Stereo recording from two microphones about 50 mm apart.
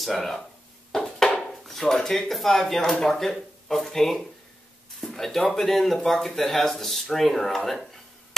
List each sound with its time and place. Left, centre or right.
0.0 s speech: centre
0.9 s a sound: centre
2.8 s speech: centre